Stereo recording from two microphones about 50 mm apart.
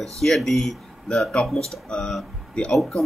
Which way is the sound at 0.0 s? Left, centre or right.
Centre.